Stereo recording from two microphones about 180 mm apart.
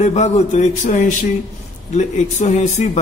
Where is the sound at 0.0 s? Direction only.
40° left (ahead or behind).